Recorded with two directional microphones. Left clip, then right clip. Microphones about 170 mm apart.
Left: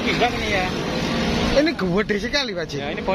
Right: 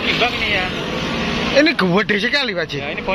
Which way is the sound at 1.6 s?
15° right (ahead or behind).